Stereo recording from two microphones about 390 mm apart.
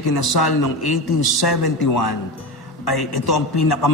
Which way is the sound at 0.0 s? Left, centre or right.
Left.